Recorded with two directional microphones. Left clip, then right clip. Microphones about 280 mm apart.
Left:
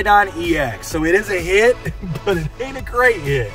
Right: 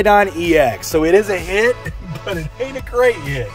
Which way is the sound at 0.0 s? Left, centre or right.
Right.